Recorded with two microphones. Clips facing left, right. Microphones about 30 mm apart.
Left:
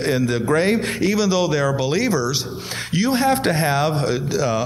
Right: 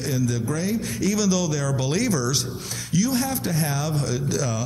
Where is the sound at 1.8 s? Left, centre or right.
Left.